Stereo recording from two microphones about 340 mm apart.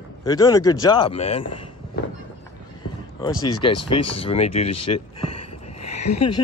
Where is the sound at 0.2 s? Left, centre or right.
Centre.